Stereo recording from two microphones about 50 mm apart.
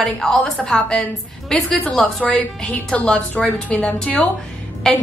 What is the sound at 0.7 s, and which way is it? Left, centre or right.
A woman's voice, centre.